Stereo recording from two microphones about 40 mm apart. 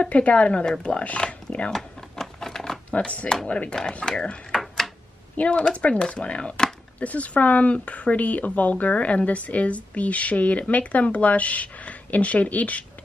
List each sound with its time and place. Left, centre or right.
0.0 s speech: left
1.7 s a sound: centre
3.4 s speech: left
4.0 s speech: left
4.5 s typewriter: centre
5.4 s speech: left